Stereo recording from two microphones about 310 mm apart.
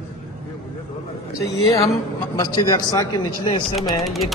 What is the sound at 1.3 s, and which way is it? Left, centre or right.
Speech, centre.